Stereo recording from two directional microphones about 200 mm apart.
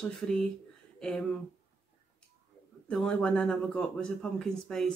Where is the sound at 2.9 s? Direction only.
5° left (ahead or behind).